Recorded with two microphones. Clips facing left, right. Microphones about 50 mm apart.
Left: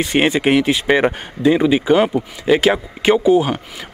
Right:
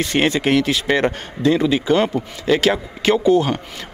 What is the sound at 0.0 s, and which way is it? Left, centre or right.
Speech, centre.